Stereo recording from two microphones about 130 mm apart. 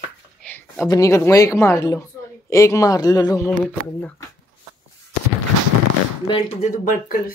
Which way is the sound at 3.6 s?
10° left (ahead or behind).